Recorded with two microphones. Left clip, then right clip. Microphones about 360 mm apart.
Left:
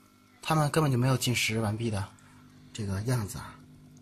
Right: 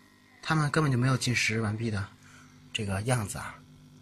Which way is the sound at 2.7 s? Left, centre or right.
Centre.